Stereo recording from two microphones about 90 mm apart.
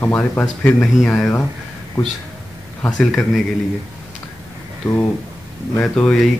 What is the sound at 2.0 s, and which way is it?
Speech, 35° left (ahead or behind).